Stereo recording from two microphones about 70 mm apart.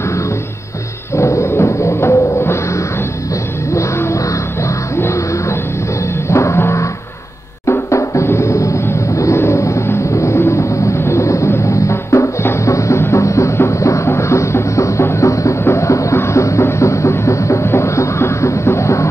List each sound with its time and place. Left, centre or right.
1.1 s music: left